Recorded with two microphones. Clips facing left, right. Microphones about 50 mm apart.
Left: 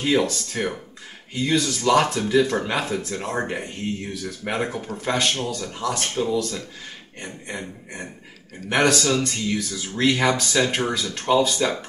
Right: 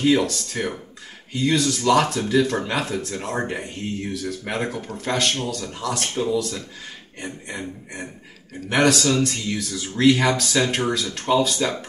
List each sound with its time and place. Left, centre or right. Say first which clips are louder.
0.0 s speech: right 2 dB; centre